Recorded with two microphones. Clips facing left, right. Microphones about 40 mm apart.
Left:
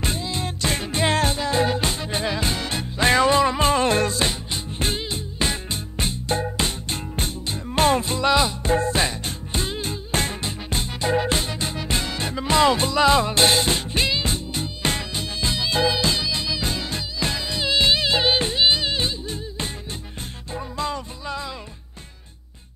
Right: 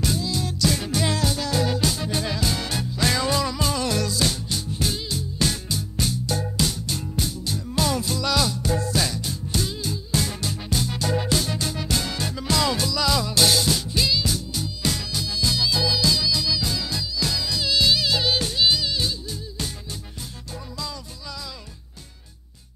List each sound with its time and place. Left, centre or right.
0.0 s music: left